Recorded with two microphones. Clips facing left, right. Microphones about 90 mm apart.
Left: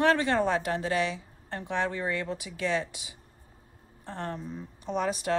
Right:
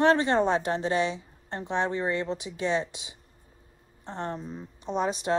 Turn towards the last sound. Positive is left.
turn(degrees=-20)  # may be behind; listen again after turning